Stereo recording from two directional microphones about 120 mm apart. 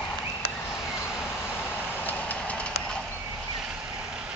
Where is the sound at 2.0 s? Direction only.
15° left (ahead or behind).